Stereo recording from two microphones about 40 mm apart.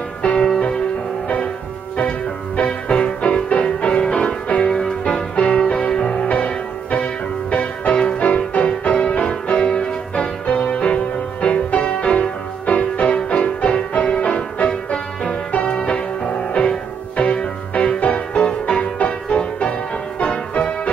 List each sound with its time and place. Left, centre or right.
0.2 s music: left
2.0 s music: left
6.2 s music: left